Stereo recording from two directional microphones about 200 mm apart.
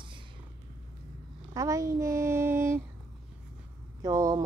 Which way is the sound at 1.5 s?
15° right (ahead or behind).